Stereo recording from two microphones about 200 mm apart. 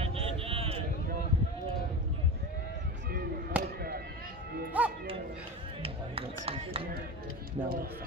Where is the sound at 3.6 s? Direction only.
50° right (ahead or behind).